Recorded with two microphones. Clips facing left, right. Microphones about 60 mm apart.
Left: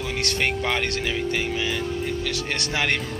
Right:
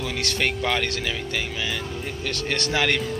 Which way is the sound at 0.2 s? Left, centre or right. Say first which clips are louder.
Left 1 dB; left.